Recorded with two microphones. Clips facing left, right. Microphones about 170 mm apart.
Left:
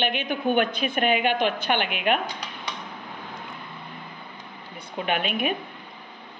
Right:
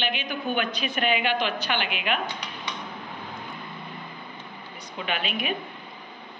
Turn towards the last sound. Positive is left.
turn(degrees=50)  # may be behind; listen again after turning